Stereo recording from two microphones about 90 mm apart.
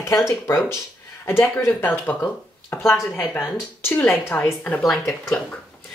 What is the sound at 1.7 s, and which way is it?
Speech, 20° left (ahead or behind).